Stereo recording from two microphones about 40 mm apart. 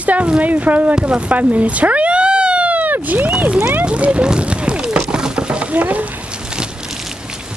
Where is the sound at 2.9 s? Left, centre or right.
Right.